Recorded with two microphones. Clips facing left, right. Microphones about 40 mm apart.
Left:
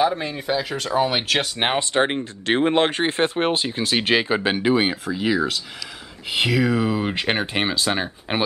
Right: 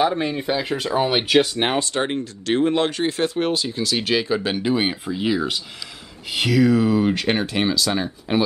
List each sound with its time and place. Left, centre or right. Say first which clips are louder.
0.0 s speech: right 1 dB; centre
1.6 s speech: left 1 dB; left
5.2 s speech: left 1 dB; centre; by 8.4 s left